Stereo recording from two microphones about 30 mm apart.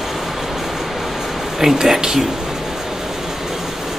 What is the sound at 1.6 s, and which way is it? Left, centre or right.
Speech, centre.